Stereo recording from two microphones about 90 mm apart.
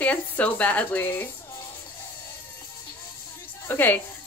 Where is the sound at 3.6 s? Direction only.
20° left (ahead or behind).